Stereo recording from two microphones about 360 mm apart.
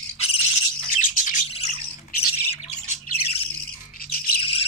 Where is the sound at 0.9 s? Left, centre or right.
Centre.